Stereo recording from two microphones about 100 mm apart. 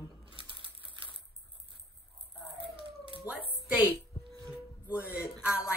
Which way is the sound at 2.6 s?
60° right (ahead or behind).